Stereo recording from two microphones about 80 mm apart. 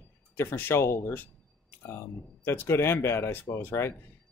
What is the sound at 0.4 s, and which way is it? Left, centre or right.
Speech, left.